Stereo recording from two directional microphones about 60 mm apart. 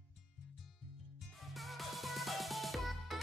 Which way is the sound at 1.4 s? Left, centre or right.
Centre.